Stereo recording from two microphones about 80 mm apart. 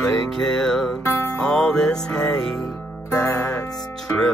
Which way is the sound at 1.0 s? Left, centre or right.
Left.